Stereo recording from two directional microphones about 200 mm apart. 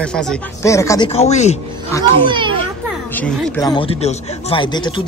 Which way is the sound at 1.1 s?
35° left (ahead or behind).